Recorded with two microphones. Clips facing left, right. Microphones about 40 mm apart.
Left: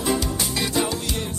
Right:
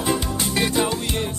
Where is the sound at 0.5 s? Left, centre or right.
Right.